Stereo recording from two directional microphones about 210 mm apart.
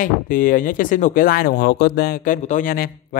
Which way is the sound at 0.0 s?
40° left (ahead or behind).